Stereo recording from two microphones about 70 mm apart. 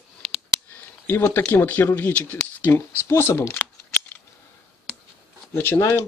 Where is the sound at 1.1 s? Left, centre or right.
Left.